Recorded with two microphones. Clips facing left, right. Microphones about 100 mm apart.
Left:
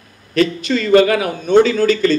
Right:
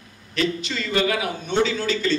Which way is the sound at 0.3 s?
50° left (ahead or behind).